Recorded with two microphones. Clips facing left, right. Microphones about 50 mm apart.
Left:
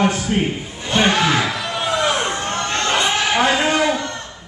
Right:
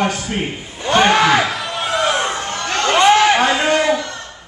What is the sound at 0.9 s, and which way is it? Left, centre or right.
Speech, right.